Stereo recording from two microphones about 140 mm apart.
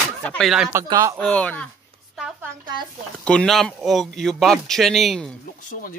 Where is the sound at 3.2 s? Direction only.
5° left (ahead or behind).